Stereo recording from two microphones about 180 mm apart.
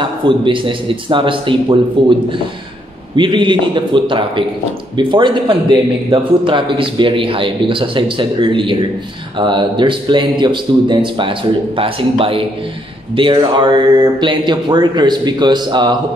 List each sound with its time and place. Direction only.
0.0 s a man's voice: 30° right (ahead or behind)
3.2 s a man's voice: 25° right (ahead or behind)